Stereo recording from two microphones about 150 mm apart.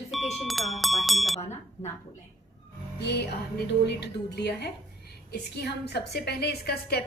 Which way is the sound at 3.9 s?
90° left.